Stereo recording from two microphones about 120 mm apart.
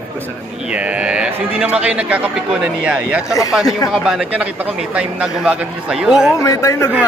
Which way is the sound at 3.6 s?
30° left (ahead or behind).